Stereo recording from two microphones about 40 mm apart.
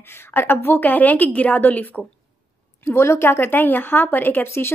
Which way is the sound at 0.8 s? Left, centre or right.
Left.